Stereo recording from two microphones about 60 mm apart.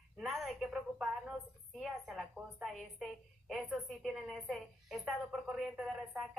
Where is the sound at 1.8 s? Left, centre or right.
Centre.